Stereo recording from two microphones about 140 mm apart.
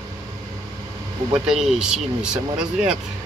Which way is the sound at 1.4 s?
5° right (ahead or behind).